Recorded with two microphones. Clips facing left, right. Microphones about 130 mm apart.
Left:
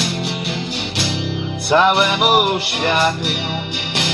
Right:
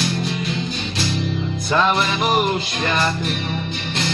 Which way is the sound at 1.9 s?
70° left (ahead or behind).